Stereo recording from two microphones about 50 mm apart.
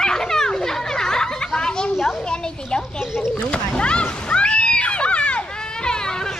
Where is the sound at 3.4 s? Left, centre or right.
Left.